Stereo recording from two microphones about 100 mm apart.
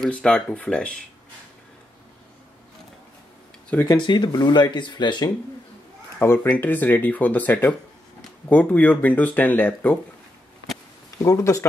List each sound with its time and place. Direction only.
0.0 s speech: 5° left (ahead or behind)
3.8 s speech: 50° left (ahead or behind)
6.1 s speech: 20° left (ahead or behind)
11.2 s speech: 30° left (ahead or behind)